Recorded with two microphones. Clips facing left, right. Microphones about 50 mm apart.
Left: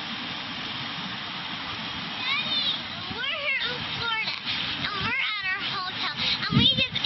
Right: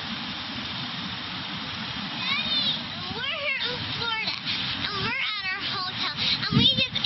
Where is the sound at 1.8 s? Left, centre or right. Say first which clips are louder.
Even; left.